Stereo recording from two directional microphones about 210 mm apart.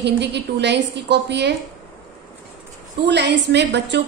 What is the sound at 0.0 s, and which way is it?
A woman's voice, 55° right (ahead or behind).